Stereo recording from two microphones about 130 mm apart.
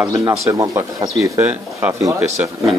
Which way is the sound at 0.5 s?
25° right (ahead or behind).